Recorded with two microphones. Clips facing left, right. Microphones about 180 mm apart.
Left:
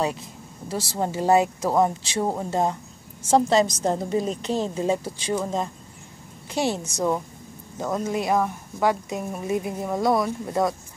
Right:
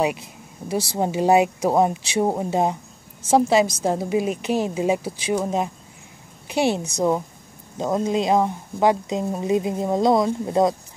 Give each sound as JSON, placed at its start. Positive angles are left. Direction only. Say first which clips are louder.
{"t": 0.7, "sound": "speech", "louder": "right 4 dB", "side_deg": -15}